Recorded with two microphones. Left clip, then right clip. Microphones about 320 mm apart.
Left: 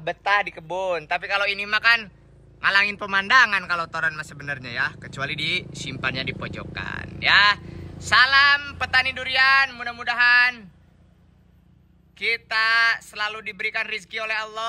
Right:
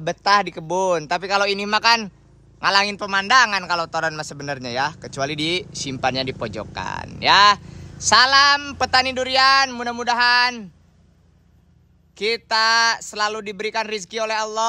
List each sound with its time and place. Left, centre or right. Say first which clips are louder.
0.0 s a man's voice: right 4 dB; centre
12.2 s a man's voice: right 3 dB; centre